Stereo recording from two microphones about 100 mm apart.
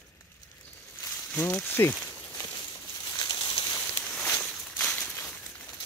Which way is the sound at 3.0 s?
35° left (ahead or behind).